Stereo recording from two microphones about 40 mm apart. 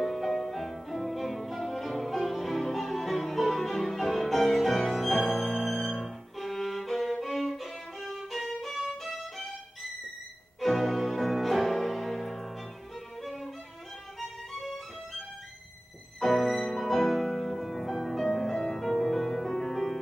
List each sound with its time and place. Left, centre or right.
0.0 s music: centre
10.6 s music: centre
13.2 s violin: centre
14.2 s music: centre
16.2 s music: centre